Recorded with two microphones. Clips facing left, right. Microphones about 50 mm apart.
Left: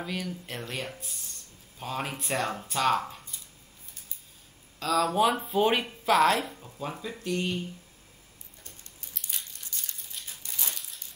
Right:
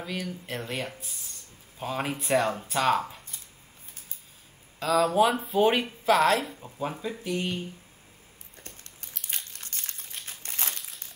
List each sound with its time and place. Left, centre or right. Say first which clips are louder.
0.0 s speech: even; centre
4.7 s speech: right 3 dB; centre
6.6 s speech: right 4 dB; centre
8.6 s crumpling: right 3 dB; right